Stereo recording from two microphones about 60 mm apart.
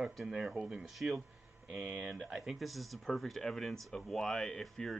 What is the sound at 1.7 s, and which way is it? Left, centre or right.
Speech, right.